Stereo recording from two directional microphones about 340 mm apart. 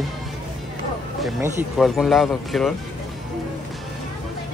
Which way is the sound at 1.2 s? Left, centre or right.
Centre.